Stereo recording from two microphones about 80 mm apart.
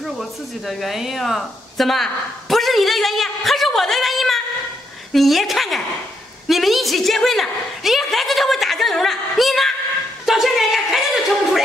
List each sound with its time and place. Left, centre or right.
0.0 s a woman's voice: centre